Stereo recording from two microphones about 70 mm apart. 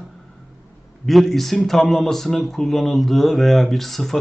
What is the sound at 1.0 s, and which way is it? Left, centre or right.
Speech, centre.